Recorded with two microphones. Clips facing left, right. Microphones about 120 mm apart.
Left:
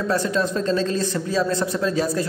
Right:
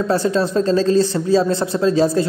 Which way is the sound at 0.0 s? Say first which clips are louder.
Right 4 dB; 30° right (ahead or behind).